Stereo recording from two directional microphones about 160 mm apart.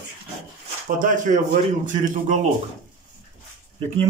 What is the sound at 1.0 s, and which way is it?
A man's voice, 55° right (ahead or behind).